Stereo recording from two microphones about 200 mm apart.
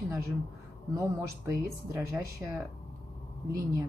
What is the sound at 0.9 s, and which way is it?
Speech, 15° right (ahead or behind).